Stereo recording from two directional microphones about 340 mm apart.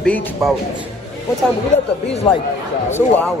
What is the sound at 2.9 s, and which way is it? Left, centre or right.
Speech, centre.